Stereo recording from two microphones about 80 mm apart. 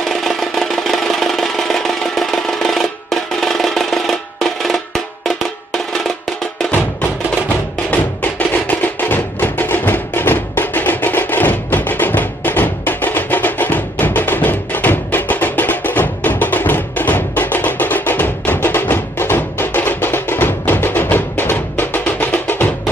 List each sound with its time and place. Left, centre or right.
0.1 s music: centre
7.9 s music: left